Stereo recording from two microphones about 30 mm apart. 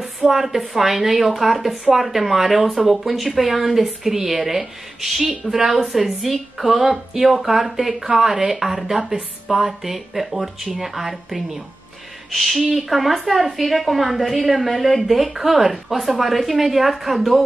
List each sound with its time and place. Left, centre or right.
0.3 s speech: centre
9.1 s a woman's voice: right
9.5 s speech: centre